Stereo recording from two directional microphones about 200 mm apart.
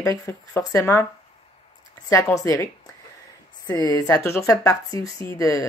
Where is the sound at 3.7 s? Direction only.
20° left (ahead or behind).